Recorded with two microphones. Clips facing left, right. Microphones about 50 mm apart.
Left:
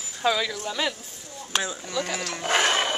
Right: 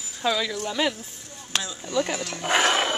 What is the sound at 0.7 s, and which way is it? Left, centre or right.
Speech, centre.